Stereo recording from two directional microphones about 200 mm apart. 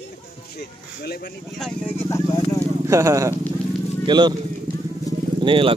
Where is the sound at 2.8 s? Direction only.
15° right (ahead or behind).